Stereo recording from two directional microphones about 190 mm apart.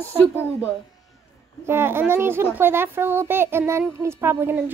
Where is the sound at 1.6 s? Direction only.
10° right (ahead or behind).